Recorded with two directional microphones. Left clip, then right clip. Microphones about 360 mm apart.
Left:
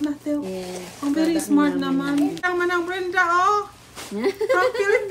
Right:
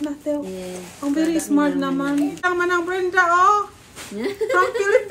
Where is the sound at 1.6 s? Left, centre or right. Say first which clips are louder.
Right 1 dB; centre.